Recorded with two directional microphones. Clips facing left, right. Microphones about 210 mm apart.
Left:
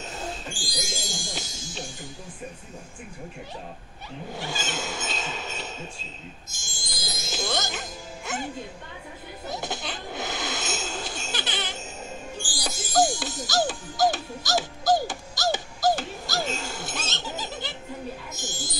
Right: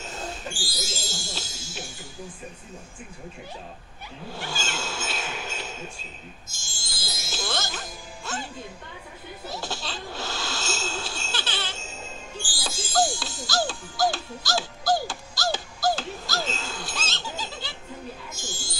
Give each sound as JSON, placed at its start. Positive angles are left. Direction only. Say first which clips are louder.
{"t": 0.5, "sound": "music", "louder": "even", "side_deg": 15}
{"t": 4.5, "sound": "cat", "louder": "left 1 dB", "side_deg": 20}
{"t": 5.2, "sound": "a sound", "louder": "even", "side_deg": 0}
{"t": 6.5, "sound": "speech", "louder": "left 3 dB", "side_deg": 20}
{"t": 9.5, "sound": "a sound", "louder": "left 2 dB", "side_deg": 20}
{"t": 18.3, "sound": "music", "louder": "left 2 dB", "side_deg": 15}